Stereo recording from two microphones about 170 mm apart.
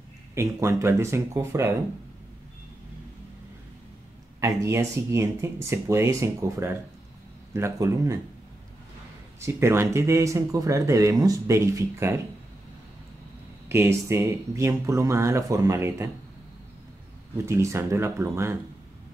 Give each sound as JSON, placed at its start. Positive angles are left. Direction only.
{"t": 0.3, "sound": "speech", "side_deg": -15}
{"t": 4.4, "sound": "speech", "side_deg": -15}
{"t": 9.4, "sound": "speech", "side_deg": -15}
{"t": 13.7, "sound": "speech", "side_deg": -15}
{"t": 17.5, "sound": "speech", "side_deg": -15}